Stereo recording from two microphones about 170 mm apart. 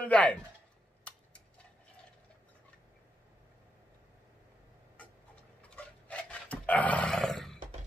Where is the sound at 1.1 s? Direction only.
5° left (ahead or behind).